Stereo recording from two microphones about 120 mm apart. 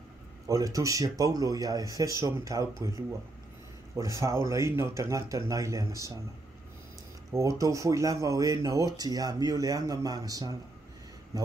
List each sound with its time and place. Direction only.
0.5 s speech: 30° right (ahead or behind)
7.3 s speech: 25° right (ahead or behind)